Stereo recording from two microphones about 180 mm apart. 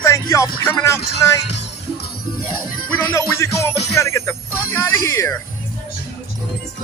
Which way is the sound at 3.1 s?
15° left (ahead or behind).